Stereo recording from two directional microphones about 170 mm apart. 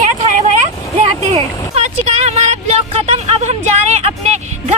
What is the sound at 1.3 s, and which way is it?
Vehicle, 40° right (ahead or behind).